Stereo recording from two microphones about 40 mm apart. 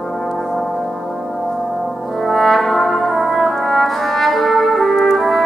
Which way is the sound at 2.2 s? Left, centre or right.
Centre.